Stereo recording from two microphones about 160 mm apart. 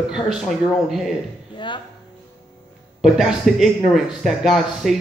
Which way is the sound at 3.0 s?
Centre (ahead or behind).